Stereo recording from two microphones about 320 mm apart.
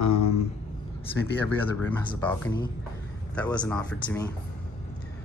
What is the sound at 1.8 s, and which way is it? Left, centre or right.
Speech, centre.